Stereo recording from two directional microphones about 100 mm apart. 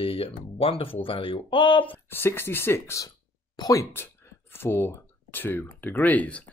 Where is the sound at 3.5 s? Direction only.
40° left (ahead or behind).